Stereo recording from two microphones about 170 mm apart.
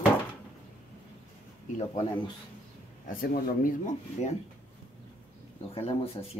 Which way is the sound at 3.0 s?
55° left (ahead or behind).